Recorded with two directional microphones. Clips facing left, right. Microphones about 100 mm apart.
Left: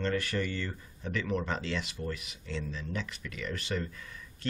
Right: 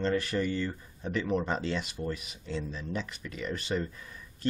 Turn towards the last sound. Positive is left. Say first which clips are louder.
# right 3 dB
turn(degrees=-20)  # may be behind; listen again after turning